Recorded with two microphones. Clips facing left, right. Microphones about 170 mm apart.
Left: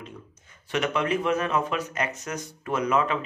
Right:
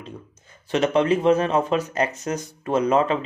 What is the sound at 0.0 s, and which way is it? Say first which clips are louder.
Speech: right 3 dB; 30° right (ahead or behind).